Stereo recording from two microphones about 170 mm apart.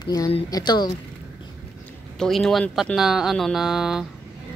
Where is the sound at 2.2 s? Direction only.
Centre (ahead or behind).